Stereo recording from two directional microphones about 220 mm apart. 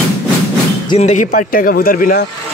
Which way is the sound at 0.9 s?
30° left (ahead or behind).